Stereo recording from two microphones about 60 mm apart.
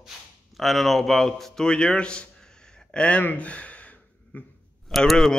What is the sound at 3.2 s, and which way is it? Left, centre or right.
Gasp, left.